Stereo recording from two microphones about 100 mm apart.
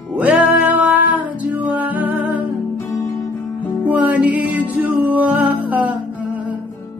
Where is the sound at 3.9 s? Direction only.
15° right (ahead or behind).